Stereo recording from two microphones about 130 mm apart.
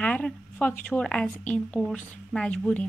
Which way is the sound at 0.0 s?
10° left (ahead or behind).